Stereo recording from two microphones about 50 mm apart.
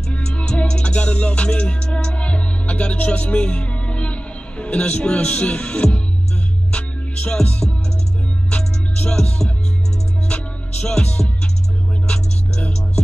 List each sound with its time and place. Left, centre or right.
0.1 s music: left
7.2 s music: centre